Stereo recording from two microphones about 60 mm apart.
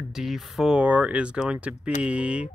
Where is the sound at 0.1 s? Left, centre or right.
Centre.